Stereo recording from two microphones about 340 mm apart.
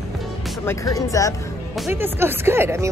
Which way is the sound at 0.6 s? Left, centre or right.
Centre.